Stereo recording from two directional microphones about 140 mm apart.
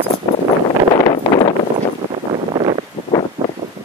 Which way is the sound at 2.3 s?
40° right (ahead or behind).